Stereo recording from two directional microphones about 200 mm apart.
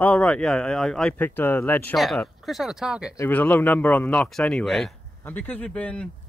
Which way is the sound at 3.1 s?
10° left (ahead or behind).